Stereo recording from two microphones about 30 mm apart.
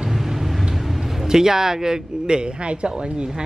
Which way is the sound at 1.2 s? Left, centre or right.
Centre.